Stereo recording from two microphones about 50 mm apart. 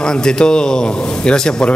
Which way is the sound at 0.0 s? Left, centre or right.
Centre.